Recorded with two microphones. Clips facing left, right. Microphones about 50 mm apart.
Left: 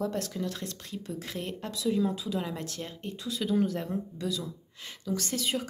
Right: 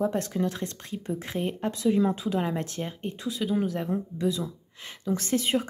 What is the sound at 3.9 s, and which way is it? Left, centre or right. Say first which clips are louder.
Speech: right 5 dB; right.